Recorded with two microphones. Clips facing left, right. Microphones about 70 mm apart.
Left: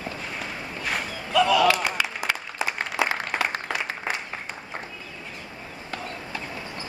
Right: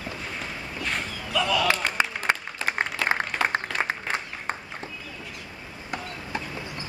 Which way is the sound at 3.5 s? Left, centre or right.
Right.